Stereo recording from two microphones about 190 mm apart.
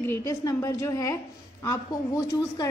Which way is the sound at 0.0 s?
15° left (ahead or behind).